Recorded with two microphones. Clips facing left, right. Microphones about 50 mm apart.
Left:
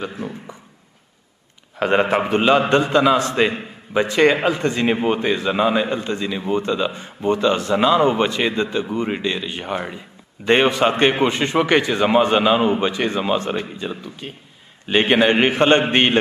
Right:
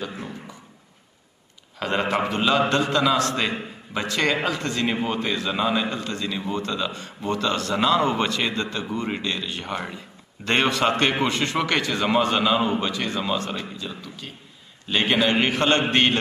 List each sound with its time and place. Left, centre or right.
0.0 s a man's voice: left
1.8 s a man's voice: left